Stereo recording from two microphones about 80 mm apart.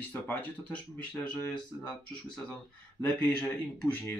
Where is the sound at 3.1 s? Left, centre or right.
Centre.